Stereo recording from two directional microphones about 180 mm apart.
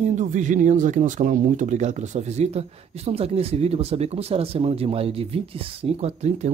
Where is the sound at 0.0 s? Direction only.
40° right (ahead or behind).